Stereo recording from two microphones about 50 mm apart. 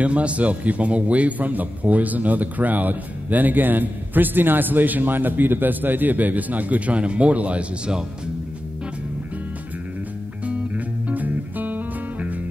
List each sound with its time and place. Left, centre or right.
0.0 s a man's voice: right
11.1 s music: right